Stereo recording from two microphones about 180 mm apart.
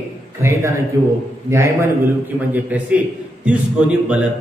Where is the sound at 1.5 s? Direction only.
15° right (ahead or behind).